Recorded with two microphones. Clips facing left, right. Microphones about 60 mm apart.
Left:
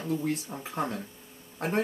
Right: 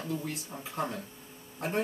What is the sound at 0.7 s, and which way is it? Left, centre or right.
Speech, left.